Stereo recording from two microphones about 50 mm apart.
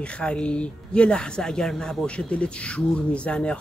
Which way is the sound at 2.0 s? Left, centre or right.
Left.